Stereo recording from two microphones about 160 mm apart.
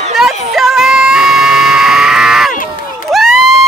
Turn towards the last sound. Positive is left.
turn(degrees=0)  # may be behind; listen again after turning